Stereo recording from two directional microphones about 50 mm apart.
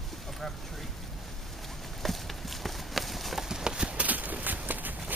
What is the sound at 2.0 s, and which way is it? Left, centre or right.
Clip-clop, centre.